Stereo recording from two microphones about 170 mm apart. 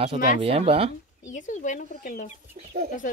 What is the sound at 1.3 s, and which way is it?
Speech, 50° left (ahead or behind).